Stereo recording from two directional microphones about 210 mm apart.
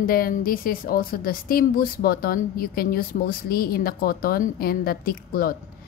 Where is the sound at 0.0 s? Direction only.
45° left (ahead or behind).